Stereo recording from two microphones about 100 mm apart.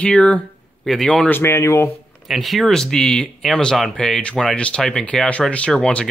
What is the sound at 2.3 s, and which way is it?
A man's voice, centre (ahead or behind).